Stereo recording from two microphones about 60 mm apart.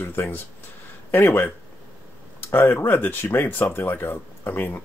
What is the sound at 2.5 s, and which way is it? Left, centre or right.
Speech, left.